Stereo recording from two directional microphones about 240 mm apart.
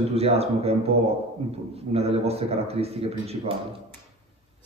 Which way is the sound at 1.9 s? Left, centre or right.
Right.